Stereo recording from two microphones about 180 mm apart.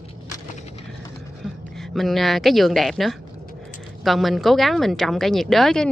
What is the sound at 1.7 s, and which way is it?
A woman's voice, centre (ahead or behind).